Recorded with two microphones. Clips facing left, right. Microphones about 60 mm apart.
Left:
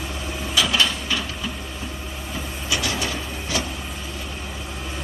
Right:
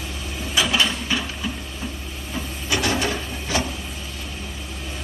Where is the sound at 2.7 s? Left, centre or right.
Right.